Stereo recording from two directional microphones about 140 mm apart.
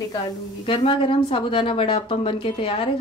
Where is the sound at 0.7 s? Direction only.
40° left (ahead or behind).